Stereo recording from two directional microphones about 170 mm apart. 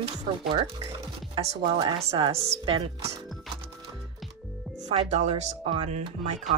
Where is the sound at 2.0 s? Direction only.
35° right (ahead or behind).